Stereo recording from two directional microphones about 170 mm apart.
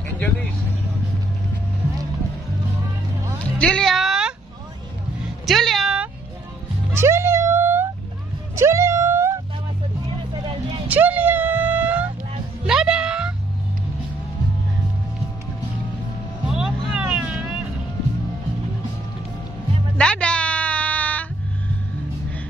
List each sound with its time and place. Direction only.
3.5 s music: 5° left (ahead or behind)
5.5 s a sound: centre (ahead or behind)
6.9 s music: 15° right (ahead or behind)
8.5 s cat: 15° right (ahead or behind)
10.9 s a sound: 10° right (ahead or behind)
12.6 s music: 5° right (ahead or behind)
16.4 s vehicle: 5° right (ahead or behind)
20.0 s music: 5° left (ahead or behind)